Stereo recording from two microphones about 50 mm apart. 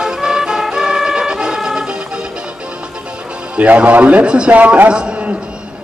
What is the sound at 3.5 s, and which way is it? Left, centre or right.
Speech, right.